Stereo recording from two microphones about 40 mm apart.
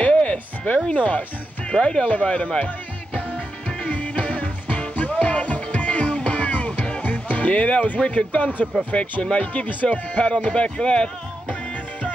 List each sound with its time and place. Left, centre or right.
0.0 s music: left
0.9 s speech: left
1.7 s speech: left
2.2 s speech: left
2.6 s music: left
3.6 s music: left
8.0 s speech: left
9.2 s speech: left